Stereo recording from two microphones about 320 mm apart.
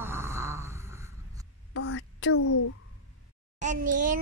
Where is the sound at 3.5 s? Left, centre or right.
Right.